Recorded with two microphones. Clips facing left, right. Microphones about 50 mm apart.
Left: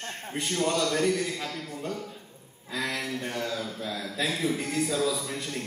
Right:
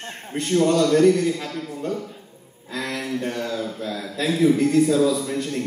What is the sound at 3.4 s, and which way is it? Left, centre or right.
A man's voice, centre.